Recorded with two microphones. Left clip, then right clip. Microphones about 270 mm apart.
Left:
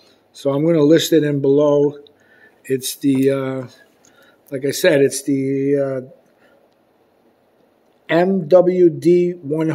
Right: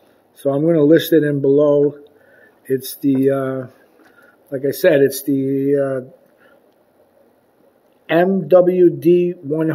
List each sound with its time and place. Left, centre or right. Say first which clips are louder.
0.4 s speech: right 1 dB; centre
8.1 s speech: even; centre